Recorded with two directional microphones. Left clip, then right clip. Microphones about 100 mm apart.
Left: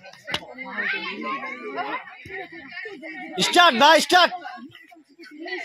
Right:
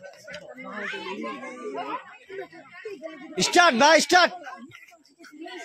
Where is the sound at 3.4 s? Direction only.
35° right (ahead or behind).